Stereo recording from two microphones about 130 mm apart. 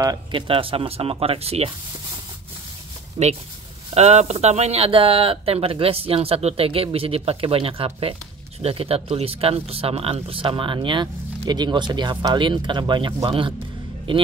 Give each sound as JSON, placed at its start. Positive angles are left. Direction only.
{"t": 0.0, "sound": "speech", "side_deg": -35}
{"t": 3.2, "sound": "speech", "side_deg": -45}
{"t": 3.9, "sound": "speech", "side_deg": -55}